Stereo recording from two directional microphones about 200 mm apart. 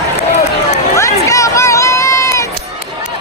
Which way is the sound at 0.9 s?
15° left (ahead or behind).